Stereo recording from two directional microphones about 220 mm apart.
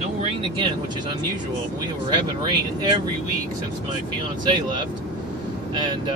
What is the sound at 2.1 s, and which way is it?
Speech, 20° right (ahead or behind).